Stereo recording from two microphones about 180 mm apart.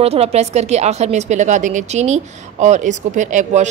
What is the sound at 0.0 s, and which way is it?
A woman's voice, 35° right (ahead or behind).